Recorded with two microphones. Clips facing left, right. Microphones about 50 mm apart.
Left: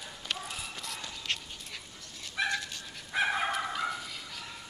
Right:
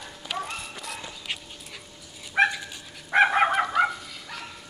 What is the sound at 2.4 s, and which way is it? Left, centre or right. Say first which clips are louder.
Dog: right 9 dB; right.